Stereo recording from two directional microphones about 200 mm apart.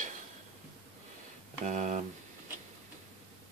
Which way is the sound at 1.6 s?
35° right (ahead or behind).